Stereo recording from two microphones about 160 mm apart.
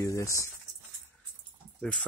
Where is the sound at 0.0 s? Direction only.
20° left (ahead or behind).